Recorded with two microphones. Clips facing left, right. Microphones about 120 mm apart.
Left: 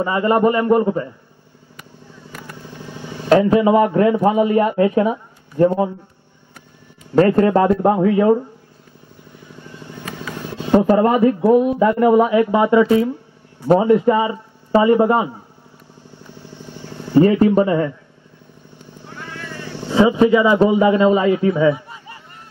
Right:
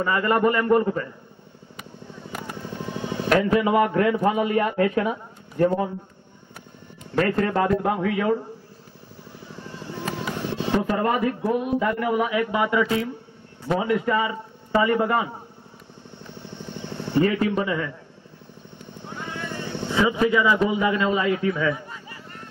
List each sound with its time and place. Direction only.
0.0 s a man's voice: 20° left (ahead or behind)
3.3 s a man's voice: 25° left (ahead or behind)
7.2 s a man's voice: 30° left (ahead or behind)
9.7 s vehicle: 30° right (ahead or behind)
10.7 s a man's voice: 30° left (ahead or behind)
16.2 s vehicle: 25° right (ahead or behind)
17.1 s a man's voice: 30° left (ahead or behind)
19.0 s vehicle: 20° right (ahead or behind)
19.9 s a man's voice: 25° left (ahead or behind)
21.7 s a sound: 10° left (ahead or behind)